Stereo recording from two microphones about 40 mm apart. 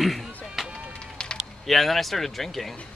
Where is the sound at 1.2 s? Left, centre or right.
Left.